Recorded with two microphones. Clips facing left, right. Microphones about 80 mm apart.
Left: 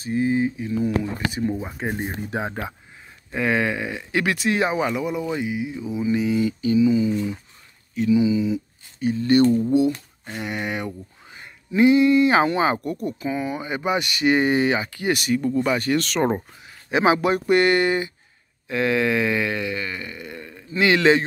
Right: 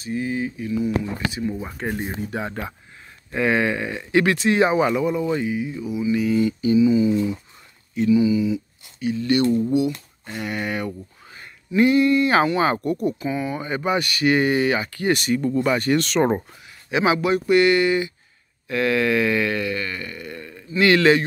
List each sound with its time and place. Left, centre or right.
0.0 s speech: left
0.7 s speech: left
1.6 s speech: centre
2.0 s speech: left
3.3 s speech: centre
6.6 s speech: centre
8.1 s speech: centre
9.0 s speech: left
10.4 s speech: centre
16.9 s speech: left
18.7 s speech: centre